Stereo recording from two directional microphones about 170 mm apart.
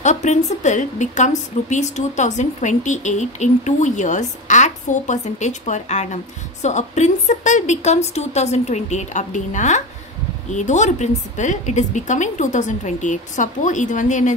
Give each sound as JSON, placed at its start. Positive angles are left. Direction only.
{"t": 0.0, "sound": "speech", "side_deg": 45}